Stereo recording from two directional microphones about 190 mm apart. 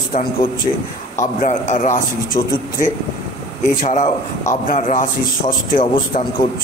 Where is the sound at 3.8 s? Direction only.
40° left (ahead or behind).